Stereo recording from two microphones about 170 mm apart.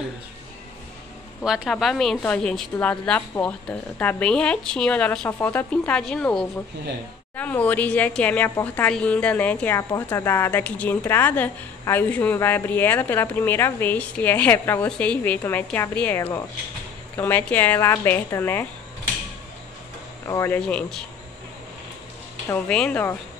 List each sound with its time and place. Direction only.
1.4 s a woman's voice: 5° right (ahead or behind); by 18.7 s 15° left (ahead or behind)
20.2 s a woman's voice: 15° left (ahead or behind)
22.7 s a woman's voice: 5° left (ahead or behind)